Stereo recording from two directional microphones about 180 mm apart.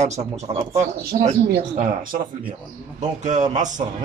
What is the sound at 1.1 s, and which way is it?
Speech, 45° right (ahead or behind).